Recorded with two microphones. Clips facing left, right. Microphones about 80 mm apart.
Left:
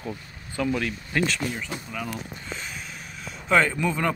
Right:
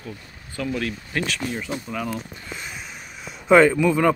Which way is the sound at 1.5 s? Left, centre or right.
Centre.